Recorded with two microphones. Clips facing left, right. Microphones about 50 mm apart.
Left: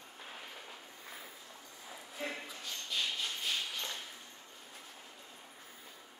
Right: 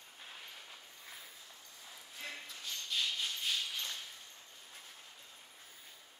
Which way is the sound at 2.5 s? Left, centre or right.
Centre.